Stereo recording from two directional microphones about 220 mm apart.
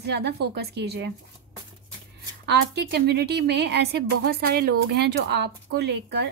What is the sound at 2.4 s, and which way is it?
A woman's voice, 50° right (ahead or behind).